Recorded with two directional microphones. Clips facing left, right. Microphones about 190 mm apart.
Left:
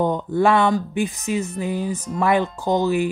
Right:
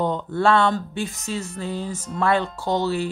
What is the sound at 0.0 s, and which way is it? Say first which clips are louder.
Speech: left 3 dB; 15° left (ahead or behind).